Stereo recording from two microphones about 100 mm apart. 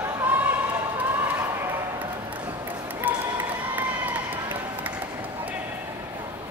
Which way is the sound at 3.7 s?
20° right (ahead or behind).